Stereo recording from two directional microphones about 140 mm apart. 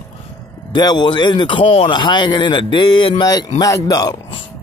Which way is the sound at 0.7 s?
30° left (ahead or behind).